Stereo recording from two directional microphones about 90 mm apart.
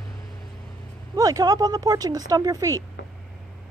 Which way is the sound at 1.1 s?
40° right (ahead or behind).